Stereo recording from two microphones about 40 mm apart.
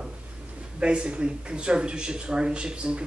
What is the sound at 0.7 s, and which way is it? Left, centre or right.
A man's voice, right.